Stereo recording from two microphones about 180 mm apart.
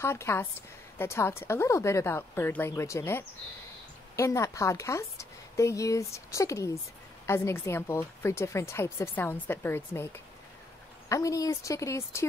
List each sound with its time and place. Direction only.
0.0 s a woman's voice: 15° left (ahead or behind)